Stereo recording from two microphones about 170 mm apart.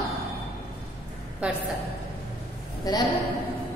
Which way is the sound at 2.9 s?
20° left (ahead or behind).